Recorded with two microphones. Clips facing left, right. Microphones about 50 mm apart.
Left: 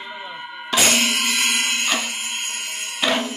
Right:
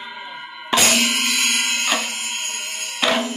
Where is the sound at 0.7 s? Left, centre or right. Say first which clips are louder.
Right 1 dB; right.